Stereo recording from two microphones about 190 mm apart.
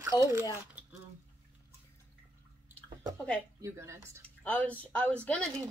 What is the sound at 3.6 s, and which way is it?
Speech, 15° right (ahead or behind).